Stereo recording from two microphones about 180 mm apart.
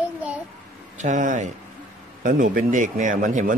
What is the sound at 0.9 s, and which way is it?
Speech, 45° right (ahead or behind).